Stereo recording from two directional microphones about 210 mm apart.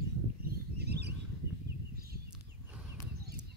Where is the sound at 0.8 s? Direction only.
50° right (ahead or behind).